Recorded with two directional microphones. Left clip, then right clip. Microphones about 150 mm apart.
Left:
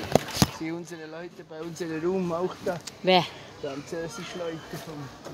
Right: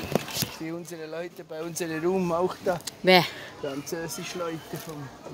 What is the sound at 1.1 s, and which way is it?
Speech, 90° right.